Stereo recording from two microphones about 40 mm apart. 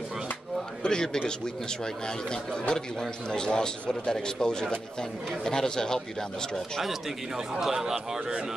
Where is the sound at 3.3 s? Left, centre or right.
Centre.